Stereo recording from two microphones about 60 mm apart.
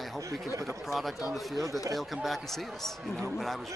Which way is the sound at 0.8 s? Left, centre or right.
Centre.